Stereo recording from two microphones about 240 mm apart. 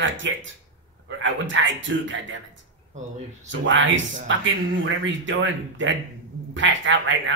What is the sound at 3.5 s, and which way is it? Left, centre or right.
Speech, right.